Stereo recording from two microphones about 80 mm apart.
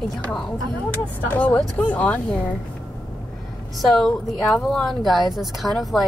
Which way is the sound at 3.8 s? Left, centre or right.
Centre.